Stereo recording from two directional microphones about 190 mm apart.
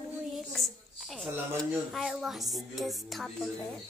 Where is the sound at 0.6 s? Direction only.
Centre (ahead or behind).